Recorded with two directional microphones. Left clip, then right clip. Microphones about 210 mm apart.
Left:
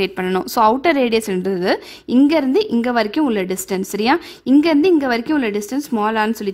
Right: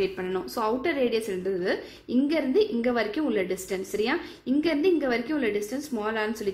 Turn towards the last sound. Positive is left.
turn(degrees=55)  # may be behind; listen again after turning